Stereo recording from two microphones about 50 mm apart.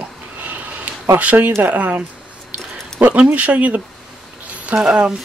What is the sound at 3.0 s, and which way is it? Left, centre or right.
Speech, right.